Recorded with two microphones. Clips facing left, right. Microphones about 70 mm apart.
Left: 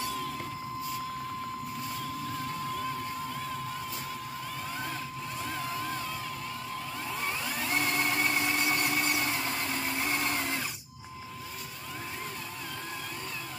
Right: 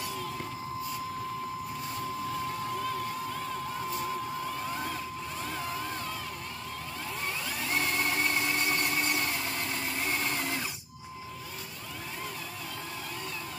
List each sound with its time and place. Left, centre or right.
5.5 s crowd: centre
7.5 s a sound: centre
8.5 s vehicle: centre